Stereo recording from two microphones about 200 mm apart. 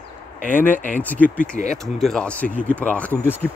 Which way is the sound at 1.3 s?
40° left (ahead or behind).